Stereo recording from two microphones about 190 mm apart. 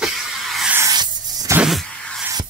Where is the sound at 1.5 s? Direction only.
Centre (ahead or behind).